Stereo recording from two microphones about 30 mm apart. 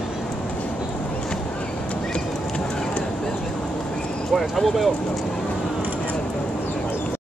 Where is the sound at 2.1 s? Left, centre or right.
Left.